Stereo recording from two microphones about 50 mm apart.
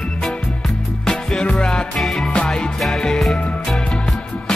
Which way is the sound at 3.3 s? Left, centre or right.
Left.